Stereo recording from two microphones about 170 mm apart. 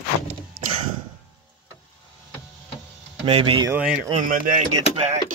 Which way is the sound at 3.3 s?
30° right (ahead or behind).